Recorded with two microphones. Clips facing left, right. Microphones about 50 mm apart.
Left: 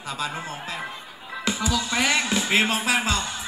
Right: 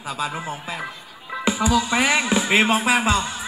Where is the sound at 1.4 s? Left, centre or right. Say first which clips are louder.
Right 6 dB; centre.